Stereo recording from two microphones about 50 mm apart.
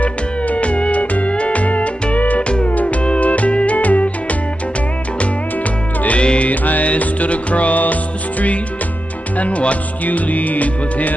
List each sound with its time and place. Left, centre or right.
0.0 s music: left
6.0 s music: left